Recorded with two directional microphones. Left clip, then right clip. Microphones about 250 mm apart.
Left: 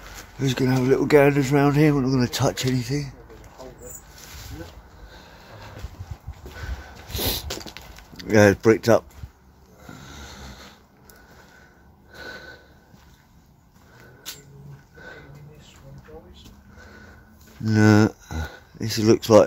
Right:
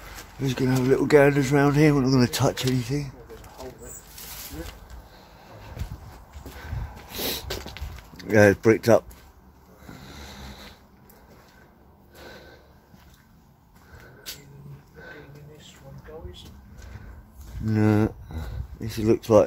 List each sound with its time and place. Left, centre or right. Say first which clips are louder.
0.4 s speech: left 2 dB; centre
2.0 s speech: even; centre
7.1 s a sound: left 3 dB; centre
10.0 s a sound: left 1 dB; centre
12.2 s snort: left 7 dB; centre
17.6 s speech: left 5 dB; centre